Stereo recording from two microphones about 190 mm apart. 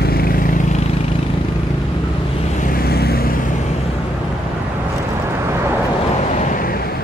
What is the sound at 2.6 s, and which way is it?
Vehicle, 50° left (ahead or behind).